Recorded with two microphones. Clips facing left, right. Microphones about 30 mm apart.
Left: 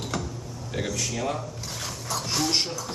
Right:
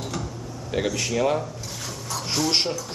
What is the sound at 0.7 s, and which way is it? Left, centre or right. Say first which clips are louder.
Speech: right 5 dB; centre.